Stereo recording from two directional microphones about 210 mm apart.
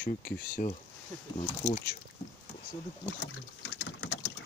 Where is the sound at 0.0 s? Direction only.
45° left (ahead or behind).